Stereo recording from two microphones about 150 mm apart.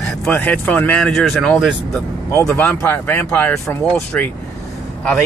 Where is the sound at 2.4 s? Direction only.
10° left (ahead or behind).